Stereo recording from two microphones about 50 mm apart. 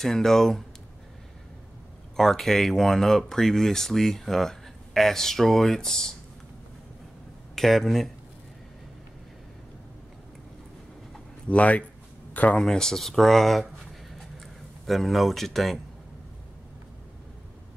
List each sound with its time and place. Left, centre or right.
0.0 s speech: centre
2.1 s speech: centre
7.5 s speech: centre
11.4 s speech: left
12.5 s speech: centre
14.1 s a sound: centre